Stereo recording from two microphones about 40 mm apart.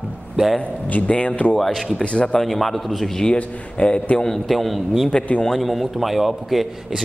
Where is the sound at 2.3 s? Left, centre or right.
Centre.